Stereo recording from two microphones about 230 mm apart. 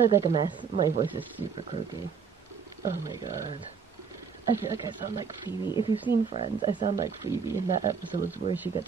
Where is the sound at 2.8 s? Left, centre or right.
Centre.